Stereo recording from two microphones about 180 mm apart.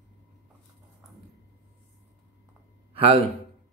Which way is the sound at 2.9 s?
30° right (ahead or behind).